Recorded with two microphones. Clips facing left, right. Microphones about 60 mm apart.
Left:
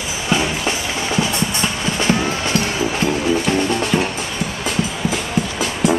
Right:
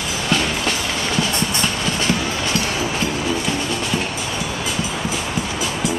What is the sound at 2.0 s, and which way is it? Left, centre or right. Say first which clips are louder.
Music: left 2 dB; left.